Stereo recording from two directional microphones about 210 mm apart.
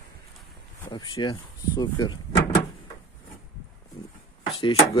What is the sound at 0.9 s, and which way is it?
Speech, 20° left (ahead or behind).